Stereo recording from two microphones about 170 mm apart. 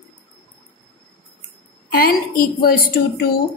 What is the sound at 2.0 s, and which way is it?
Speech, 60° left (ahead or behind).